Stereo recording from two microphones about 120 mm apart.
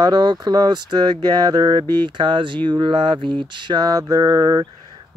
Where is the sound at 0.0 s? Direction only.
35° right (ahead or behind).